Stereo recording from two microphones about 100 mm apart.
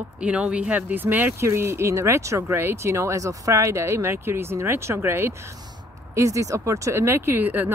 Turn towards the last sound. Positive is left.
turn(degrees=-20)  # may be behind; listen again after turning